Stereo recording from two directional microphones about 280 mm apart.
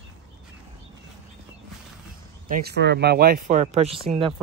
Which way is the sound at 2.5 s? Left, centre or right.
Right.